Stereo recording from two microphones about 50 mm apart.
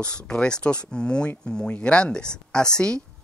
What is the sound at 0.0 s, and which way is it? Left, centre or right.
Speech, left.